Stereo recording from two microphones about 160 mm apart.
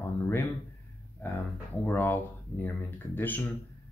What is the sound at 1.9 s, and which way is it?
Speech, 10° left (ahead or behind).